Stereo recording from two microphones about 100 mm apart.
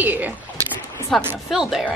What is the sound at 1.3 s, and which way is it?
Speech, 5° right (ahead or behind).